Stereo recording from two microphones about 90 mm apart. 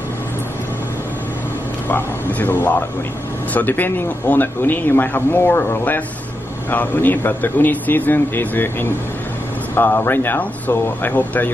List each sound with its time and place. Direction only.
1.9 s speech: 25° left (ahead or behind)